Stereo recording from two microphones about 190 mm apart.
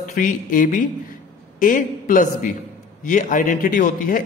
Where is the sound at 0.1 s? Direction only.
45° left (ahead or behind).